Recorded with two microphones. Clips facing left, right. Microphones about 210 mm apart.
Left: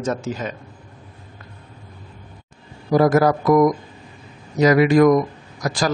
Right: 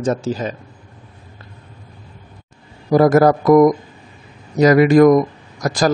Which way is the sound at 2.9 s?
45° right (ahead or behind).